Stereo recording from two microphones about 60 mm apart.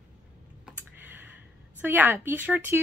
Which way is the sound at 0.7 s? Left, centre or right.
Right.